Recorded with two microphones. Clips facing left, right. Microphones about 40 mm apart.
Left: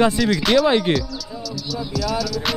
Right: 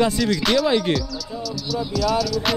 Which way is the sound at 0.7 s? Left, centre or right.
Left.